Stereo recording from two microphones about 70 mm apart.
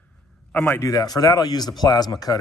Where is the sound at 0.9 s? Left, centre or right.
Left.